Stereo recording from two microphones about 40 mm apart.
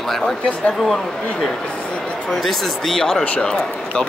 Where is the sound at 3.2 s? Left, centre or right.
Left.